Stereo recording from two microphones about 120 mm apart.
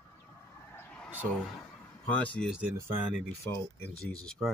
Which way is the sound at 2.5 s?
10° right (ahead or behind).